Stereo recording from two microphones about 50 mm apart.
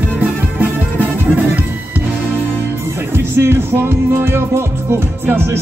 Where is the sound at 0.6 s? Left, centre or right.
Right.